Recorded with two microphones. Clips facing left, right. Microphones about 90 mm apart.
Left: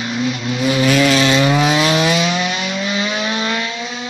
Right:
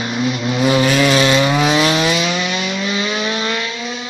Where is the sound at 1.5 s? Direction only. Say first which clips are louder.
Even; centre (ahead or behind).